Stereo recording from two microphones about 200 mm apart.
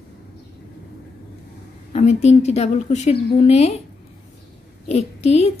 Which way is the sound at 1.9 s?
35° left (ahead or behind).